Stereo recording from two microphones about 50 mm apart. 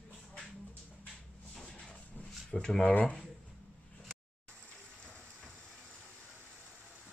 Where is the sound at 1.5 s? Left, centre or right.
Centre.